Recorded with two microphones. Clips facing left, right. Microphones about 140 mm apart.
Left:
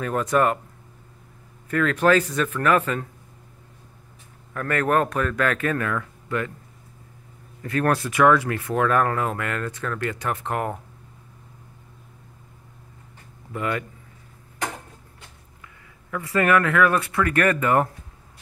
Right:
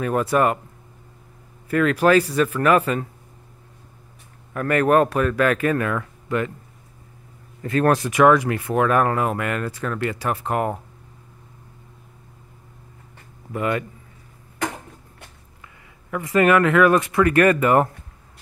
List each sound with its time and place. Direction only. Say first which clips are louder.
0.0 s speech: right 2 dB; 10° right (ahead or behind)
1.7 s speech: right 2 dB; 10° right (ahead or behind)
4.6 s speech: right 5 dB; 15° right (ahead or behind)
7.6 s speech: right 4 dB; 25° right (ahead or behind)
13.5 s speech: right 3 dB; 25° right (ahead or behind)
15.6 s speech: right 1 dB; 20° right (ahead or behind)